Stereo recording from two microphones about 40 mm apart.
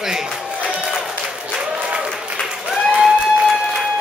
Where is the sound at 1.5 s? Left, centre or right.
Right.